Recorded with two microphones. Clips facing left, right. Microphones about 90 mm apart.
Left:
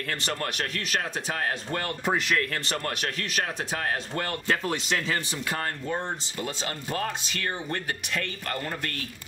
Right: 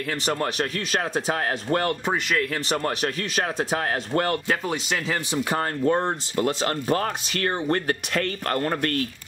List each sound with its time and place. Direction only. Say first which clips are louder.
0.2 s speech: right 6 dB; 15° right (ahead or behind)
2.0 s speech: right 2 dB; centre (ahead or behind)
2.8 s speech: right 5 dB; 20° right (ahead or behind)
3.5 s speech: right 5 dB; 35° right (ahead or behind)
4.5 s speech: right 1 dB; 5° right (ahead or behind)
5.3 s speech: right 6 dB; 30° right (ahead or behind)
5.9 s speech: right 8 dB; 60° right (ahead or behind)